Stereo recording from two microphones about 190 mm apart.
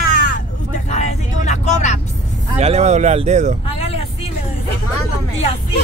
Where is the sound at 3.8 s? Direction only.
30° left (ahead or behind).